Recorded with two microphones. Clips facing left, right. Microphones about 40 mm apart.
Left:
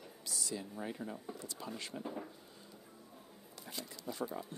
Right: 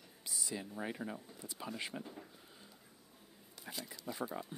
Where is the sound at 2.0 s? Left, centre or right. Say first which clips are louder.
Left 7 dB; centre.